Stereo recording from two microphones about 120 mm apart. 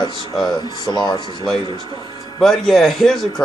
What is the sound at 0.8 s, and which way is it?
Speech, 35° left (ahead or behind).